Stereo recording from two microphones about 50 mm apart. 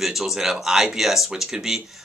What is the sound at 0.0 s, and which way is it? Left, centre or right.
Speech, centre.